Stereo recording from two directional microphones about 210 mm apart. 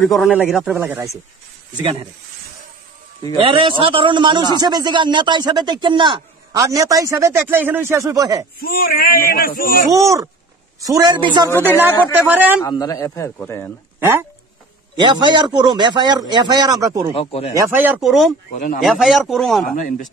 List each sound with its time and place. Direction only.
0.1 s speech: centre (ahead or behind)
1.8 s a man's voice: 25° right (ahead or behind)
3.3 s a man's voice: 25° right (ahead or behind)
8.5 s a man's voice: 45° left (ahead or behind)
9.9 s speech: 15° right (ahead or behind)
12.6 s speech: 15° left (ahead or behind)
13.9 s speech: 10° right (ahead or behind)
15.0 s a man's voice: 20° right (ahead or behind)
17.1 s speech: 25° left (ahead or behind)
17.6 s speech: 10° right (ahead or behind)
18.5 s speech: 40° left (ahead or behind)
18.8 s speech: centre (ahead or behind)
19.6 s speech: 40° left (ahead or behind)